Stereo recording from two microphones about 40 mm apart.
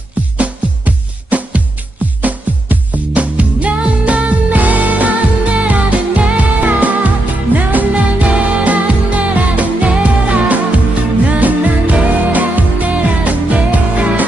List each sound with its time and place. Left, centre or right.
0.4 s music: right